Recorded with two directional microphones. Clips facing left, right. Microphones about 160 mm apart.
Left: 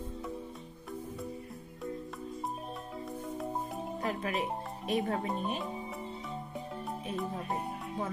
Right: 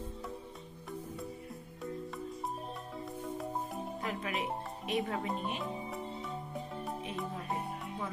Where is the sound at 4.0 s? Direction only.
40° left (ahead or behind).